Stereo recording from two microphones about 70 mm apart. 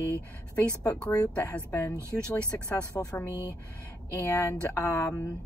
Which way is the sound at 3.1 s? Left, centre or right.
Left.